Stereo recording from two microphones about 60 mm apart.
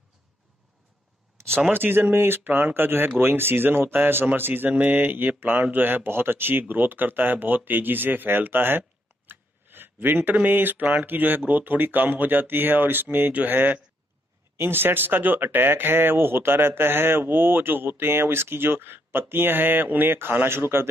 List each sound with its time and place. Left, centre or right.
1.7 s speech: right